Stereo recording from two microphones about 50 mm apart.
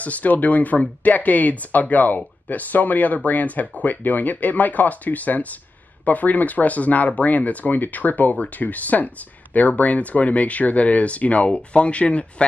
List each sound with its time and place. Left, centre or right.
0.0 s speech: left